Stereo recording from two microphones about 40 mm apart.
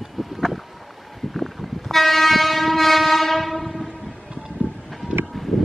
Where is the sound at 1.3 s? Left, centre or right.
Centre.